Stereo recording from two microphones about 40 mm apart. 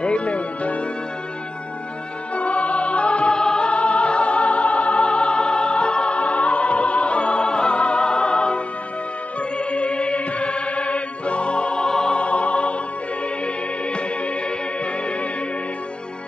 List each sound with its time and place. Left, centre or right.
0.0 s music: left
2.3 s music: left; by 12.2 s centre
12.2 s music: left